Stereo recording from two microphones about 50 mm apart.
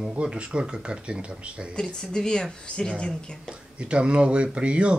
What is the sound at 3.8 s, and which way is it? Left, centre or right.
Speech, right.